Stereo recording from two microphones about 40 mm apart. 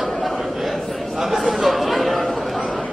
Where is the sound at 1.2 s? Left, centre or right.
Centre.